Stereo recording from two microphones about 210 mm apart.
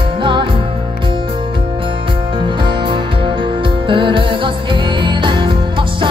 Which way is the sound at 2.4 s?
25° right (ahead or behind).